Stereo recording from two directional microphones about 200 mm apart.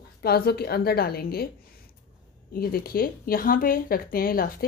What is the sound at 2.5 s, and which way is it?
Speech, 50° left (ahead or behind).